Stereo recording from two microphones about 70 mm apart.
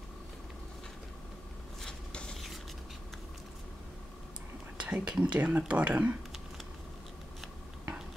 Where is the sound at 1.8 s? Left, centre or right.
Centre.